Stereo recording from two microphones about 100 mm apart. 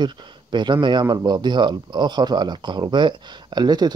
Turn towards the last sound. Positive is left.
turn(degrees=-45)  # may be behind; listen again after turning